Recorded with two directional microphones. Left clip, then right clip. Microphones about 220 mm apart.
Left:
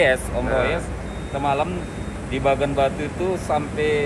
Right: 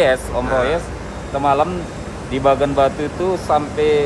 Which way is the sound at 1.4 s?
20° right (ahead or behind).